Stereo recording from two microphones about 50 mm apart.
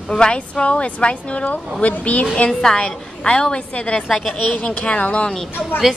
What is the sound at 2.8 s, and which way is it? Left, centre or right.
Speech, left.